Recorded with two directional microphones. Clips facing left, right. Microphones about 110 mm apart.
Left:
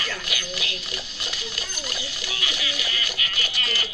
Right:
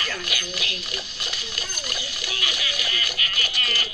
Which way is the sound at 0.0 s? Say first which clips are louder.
Right 1 dB; 25° left (ahead or behind).